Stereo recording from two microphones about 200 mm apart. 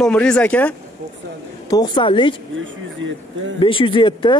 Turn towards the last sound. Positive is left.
turn(degrees=25)  # may be behind; listen again after turning